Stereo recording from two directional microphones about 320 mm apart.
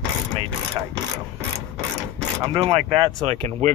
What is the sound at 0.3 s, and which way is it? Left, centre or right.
Mechanisms, centre.